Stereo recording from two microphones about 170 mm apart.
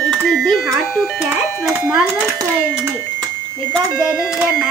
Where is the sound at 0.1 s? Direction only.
Centre (ahead or behind).